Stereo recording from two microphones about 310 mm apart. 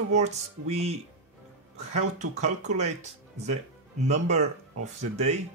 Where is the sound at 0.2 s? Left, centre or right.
Right.